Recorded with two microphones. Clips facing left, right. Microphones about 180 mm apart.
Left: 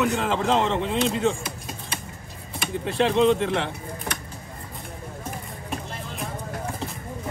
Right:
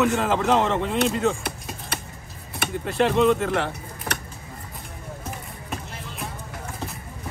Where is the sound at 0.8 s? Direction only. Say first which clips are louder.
Right 1 dB; 50° right (ahead or behind).